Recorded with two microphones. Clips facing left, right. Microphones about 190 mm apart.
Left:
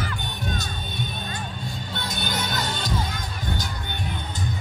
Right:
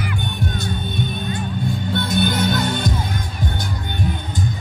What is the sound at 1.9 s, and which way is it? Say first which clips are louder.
Music: right 12 dB; 55° right (ahead or behind).